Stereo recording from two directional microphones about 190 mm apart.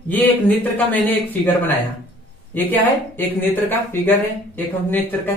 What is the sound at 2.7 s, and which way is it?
Speech, 10° left (ahead or behind).